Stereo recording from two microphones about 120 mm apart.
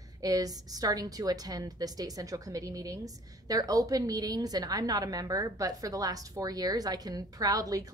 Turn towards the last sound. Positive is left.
turn(degrees=-30)  # may be behind; listen again after turning